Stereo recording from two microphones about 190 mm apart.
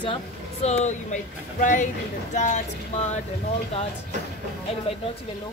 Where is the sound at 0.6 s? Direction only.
35° left (ahead or behind).